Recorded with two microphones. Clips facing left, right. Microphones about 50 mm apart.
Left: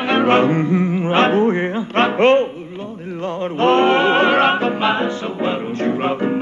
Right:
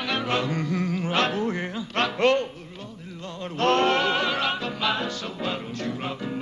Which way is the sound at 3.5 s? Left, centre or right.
Left.